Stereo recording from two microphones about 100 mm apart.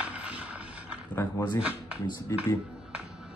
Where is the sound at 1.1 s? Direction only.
20° left (ahead or behind).